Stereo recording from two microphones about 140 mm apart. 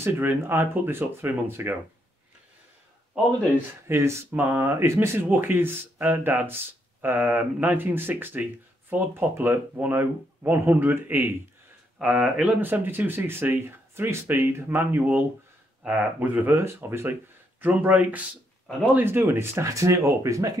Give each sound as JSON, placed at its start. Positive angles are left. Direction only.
{"t": 0.0, "sound": "speech", "side_deg": -15}
{"t": 3.8, "sound": "speech", "side_deg": -20}